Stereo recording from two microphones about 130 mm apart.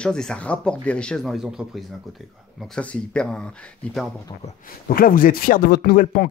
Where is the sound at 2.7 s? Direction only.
5° left (ahead or behind).